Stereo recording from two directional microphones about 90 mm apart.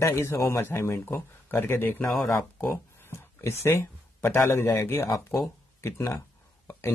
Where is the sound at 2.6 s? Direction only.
30° left (ahead or behind).